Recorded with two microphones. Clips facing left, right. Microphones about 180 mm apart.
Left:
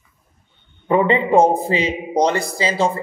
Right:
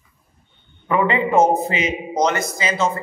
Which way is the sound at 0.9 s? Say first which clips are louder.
Left 3 dB; 30° left (ahead or behind).